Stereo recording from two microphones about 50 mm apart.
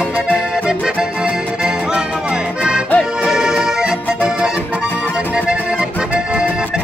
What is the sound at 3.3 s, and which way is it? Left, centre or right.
Accordion, centre.